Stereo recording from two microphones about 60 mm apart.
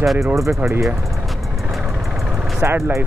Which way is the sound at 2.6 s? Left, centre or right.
Right.